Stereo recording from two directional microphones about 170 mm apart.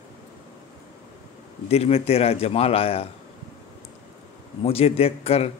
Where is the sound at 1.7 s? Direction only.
35° left (ahead or behind).